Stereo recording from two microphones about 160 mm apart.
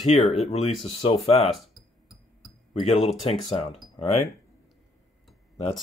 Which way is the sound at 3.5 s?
35° left (ahead or behind).